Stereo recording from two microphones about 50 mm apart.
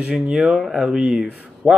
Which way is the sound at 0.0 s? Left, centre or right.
Centre.